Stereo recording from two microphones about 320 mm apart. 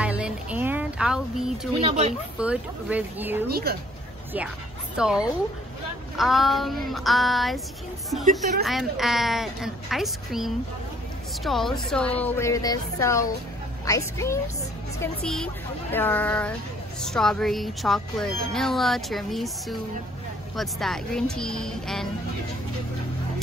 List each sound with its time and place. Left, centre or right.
0.0 s a sound: centre
1.8 s speech: centre
2.3 s speech: centre
3.4 s speech: right
4.9 s speech: centre